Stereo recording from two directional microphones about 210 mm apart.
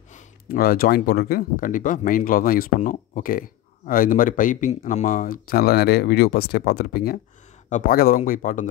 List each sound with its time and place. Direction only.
0.1 s speech: 45° left (ahead or behind)